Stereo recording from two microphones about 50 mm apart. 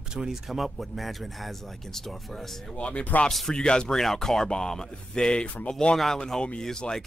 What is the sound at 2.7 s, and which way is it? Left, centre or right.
Speech, left.